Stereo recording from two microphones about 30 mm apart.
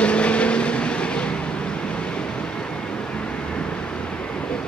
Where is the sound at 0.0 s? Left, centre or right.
Left.